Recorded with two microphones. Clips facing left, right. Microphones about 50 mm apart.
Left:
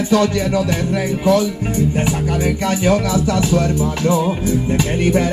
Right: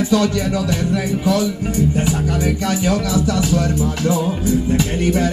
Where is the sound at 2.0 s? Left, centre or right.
Left.